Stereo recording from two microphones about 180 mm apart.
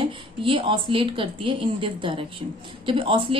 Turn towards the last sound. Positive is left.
turn(degrees=-30)  # may be behind; listen again after turning